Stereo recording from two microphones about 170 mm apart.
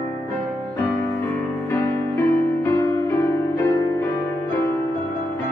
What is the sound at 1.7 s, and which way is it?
Music, 15° left (ahead or behind).